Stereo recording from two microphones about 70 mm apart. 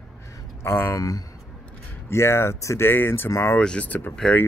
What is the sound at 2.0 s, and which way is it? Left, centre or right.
Speech, left.